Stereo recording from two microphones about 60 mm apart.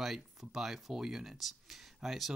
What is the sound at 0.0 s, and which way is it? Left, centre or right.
Speech, centre.